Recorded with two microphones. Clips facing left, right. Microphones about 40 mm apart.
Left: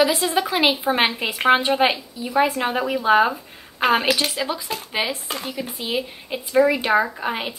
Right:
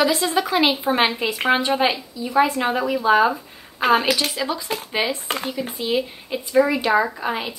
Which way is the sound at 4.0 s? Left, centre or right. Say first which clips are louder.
Even; centre.